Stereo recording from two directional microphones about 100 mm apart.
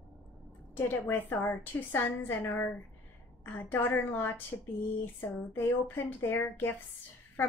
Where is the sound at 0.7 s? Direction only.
20° left (ahead or behind).